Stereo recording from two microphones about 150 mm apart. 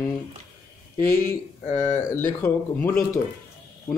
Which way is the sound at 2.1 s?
15° left (ahead or behind).